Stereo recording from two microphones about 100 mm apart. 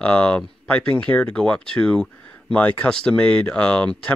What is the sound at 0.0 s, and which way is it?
Speech, 10° left (ahead or behind).